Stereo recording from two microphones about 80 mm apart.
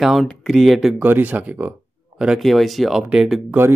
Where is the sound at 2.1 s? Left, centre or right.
Centre.